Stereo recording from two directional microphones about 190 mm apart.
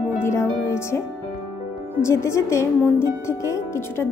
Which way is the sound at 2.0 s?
15° left (ahead or behind).